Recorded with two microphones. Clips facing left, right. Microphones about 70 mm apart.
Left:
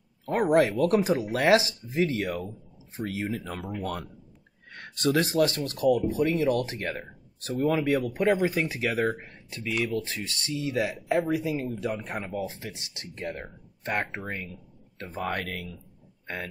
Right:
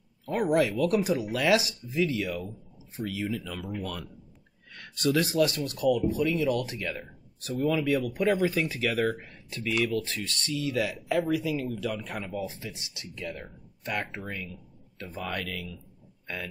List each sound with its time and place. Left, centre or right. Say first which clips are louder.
0.3 s speech: left 3 dB; left